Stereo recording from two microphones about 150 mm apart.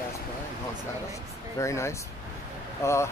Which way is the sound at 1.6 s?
20° left (ahead or behind).